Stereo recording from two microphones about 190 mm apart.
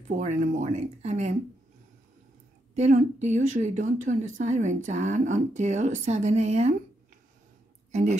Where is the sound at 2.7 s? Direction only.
35° right (ahead or behind).